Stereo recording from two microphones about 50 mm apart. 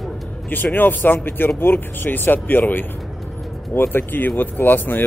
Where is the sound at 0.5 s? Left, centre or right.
Left.